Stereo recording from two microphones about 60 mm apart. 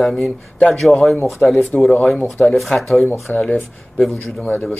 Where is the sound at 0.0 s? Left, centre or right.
Centre.